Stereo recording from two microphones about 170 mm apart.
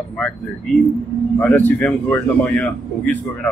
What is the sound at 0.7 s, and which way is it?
Speech, 5° left (ahead or behind).